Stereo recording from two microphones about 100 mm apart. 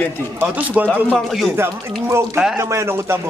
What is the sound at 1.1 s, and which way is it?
Speech, centre (ahead or behind).